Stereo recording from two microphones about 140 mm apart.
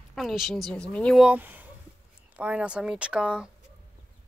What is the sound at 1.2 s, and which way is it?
Speech, 10° right (ahead or behind).